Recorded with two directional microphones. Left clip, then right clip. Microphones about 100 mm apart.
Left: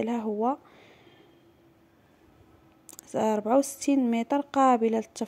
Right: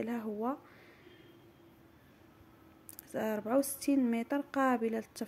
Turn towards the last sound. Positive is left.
turn(degrees=50)  # may be behind; listen again after turning